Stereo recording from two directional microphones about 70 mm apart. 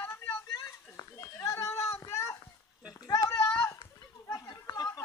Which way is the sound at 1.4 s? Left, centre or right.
Left.